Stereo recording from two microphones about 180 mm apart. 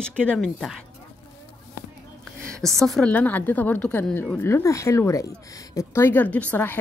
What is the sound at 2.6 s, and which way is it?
A woman's voice, centre (ahead or behind).